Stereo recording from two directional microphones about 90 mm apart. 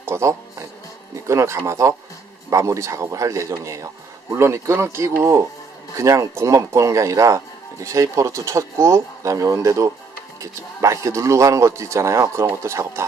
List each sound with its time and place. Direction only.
0.0 s speech: 30° right (ahead or behind)